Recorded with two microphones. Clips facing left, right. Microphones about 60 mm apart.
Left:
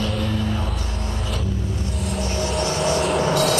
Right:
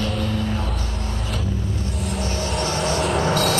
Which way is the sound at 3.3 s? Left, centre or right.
Right.